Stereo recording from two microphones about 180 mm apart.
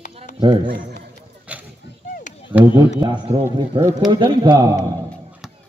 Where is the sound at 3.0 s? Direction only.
30° right (ahead or behind).